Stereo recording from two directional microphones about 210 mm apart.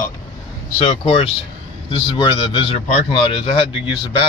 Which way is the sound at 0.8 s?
25° left (ahead or behind).